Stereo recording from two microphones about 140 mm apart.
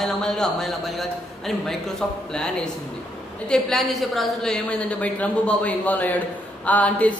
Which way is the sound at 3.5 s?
Centre (ahead or behind).